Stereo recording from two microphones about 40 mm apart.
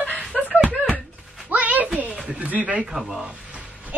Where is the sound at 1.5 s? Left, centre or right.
Right.